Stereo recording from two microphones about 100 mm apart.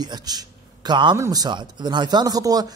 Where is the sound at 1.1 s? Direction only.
35° right (ahead or behind).